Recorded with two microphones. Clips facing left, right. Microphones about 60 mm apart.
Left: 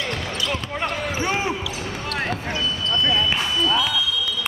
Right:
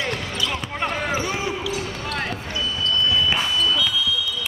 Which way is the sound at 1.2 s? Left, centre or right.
Left.